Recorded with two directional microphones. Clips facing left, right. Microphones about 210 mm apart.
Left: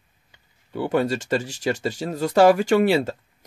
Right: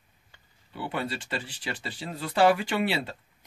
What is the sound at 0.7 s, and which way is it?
Speech, 45° left (ahead or behind).